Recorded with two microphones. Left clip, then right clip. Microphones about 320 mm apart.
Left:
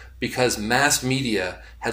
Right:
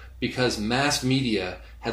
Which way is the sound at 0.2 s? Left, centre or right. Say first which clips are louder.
Left 3 dB; left.